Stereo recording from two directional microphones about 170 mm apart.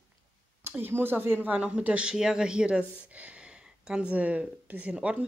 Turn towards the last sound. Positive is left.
turn(degrees=-5)  # may be behind; listen again after turning